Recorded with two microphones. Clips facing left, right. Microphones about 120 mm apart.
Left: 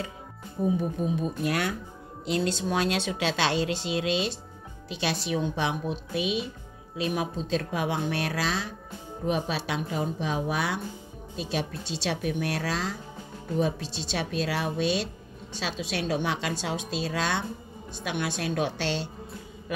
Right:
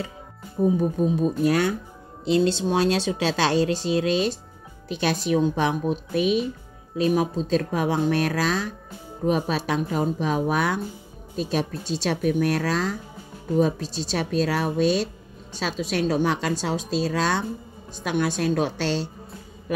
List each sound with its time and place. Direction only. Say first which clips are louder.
1.1 s speech: right 7 dB; 35° right (ahead or behind)